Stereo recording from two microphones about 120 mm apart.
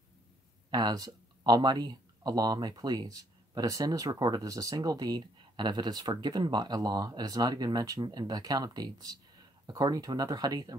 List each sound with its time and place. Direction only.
0.7 s speech: 35° right (ahead or behind)